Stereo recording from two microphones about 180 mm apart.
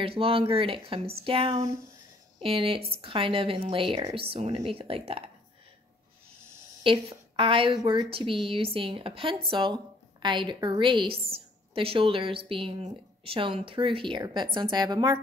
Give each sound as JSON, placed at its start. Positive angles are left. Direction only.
{"t": 0.0, "sound": "speech", "side_deg": -30}
{"t": 6.8, "sound": "a woman's voice", "side_deg": -30}